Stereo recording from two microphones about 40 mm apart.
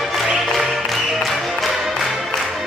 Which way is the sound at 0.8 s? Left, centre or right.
Centre.